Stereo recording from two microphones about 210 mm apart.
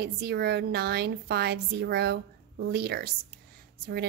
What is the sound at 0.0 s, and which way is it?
A woman's voice, 50° right (ahead or behind).